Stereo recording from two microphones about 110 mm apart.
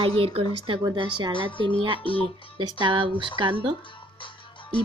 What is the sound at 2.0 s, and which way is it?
Speech, 55° left (ahead or behind).